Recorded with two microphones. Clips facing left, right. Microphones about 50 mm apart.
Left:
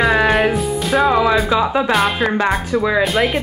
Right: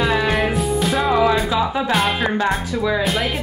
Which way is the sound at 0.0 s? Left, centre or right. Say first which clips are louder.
Left 4 dB; left.